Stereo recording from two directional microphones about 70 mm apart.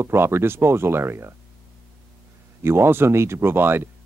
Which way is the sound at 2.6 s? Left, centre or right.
Right.